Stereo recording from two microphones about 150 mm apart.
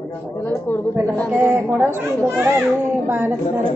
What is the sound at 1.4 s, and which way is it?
A child's voice, 20° right (ahead or behind).